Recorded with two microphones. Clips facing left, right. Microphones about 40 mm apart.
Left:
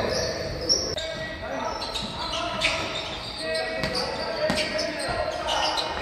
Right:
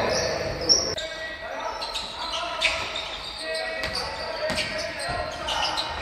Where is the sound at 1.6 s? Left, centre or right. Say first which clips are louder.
Even; right.